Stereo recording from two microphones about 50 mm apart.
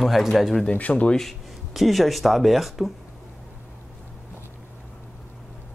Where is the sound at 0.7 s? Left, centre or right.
Left.